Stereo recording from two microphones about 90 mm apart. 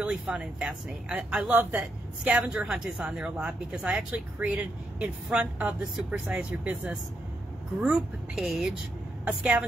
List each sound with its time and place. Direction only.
0.0 s a woman's voice: 10° right (ahead or behind)
9.2 s speech: 15° right (ahead or behind)